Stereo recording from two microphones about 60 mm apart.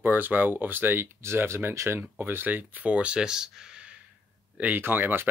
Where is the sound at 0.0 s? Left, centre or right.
Right.